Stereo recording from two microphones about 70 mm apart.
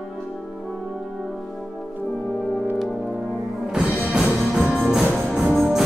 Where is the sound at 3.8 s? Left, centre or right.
Centre.